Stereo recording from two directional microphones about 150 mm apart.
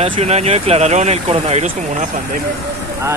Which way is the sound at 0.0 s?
45° right (ahead or behind).